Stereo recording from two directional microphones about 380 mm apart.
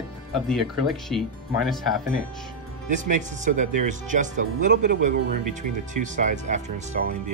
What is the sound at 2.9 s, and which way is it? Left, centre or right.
Speech, centre.